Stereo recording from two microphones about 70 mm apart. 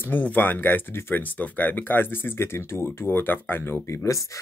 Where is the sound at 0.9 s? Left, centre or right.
Left.